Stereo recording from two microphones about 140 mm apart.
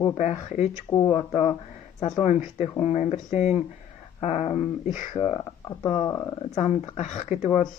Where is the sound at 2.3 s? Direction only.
55° left (ahead or behind).